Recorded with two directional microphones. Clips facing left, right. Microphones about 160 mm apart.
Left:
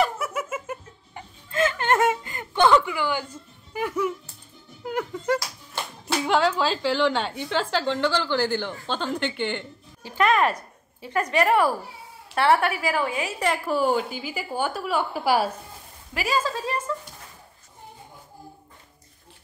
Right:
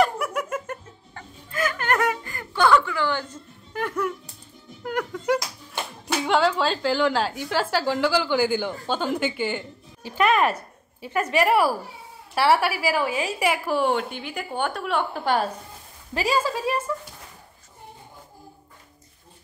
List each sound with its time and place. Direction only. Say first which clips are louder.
0.0 s a sound: right 2 dB; 5° left (ahead or behind)
1.1 s a sound: left 4 dB; 25° left (ahead or behind); by 4.1 s 10° left (ahead or behind)
4.8 s clapping: right 1 dB; centre (ahead or behind)
8.8 s a woman's voice: right 3 dB; 10° right (ahead or behind)
10.0 s a woman's voice: right 1 dB; 15° right (ahead or behind); by 15.5 s 10° left (ahead or behind)
16.3 s a woman's voice: right 2 dB; 15° right (ahead or behind)